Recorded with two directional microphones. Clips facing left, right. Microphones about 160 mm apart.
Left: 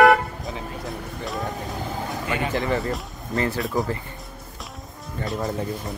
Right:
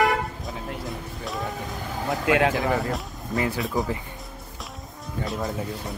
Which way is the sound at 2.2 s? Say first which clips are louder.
Right 8 dB; 90° right.